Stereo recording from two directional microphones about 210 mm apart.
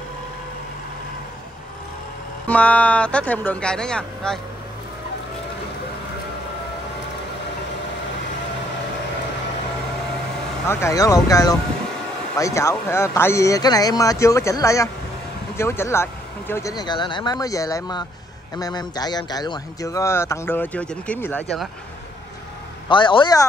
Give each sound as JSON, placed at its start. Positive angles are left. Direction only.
{"t": 2.4, "sound": "speech", "side_deg": 5}
{"t": 10.7, "sound": "a man's voice", "side_deg": 15}
{"t": 22.8, "sound": "a man's voice", "side_deg": 25}